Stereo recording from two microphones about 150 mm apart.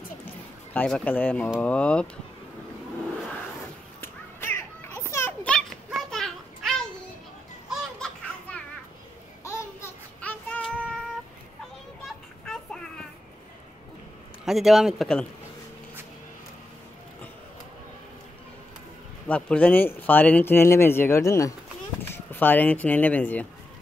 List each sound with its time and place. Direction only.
0.7 s speech: 10° left (ahead or behind)
4.0 s children playing: 15° left (ahead or behind)
7.7 s a sound: 5° left (ahead or behind)
9.4 s child singing: 15° left (ahead or behind)
12.0 s children playing: 5° left (ahead or behind)
14.4 s speech: centre (ahead or behind)
19.2 s speech: 10° left (ahead or behind)